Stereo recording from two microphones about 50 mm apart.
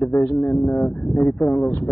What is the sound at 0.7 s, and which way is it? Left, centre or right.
Speech, left.